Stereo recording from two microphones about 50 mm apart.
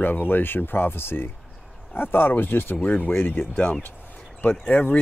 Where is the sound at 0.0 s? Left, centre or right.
Left.